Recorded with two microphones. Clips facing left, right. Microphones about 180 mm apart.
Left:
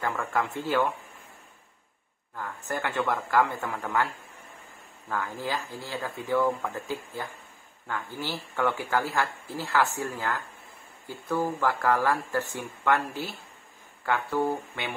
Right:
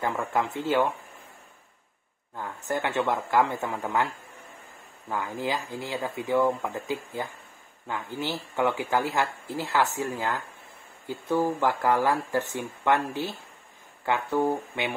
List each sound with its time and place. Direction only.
0.0 s speech: 20° right (ahead or behind)
2.3 s speech: 20° right (ahead or behind)
5.1 s speech: 20° right (ahead or behind)